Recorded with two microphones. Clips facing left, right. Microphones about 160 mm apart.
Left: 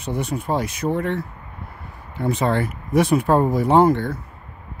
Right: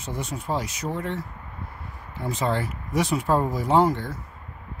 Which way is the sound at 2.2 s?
65° left (ahead or behind).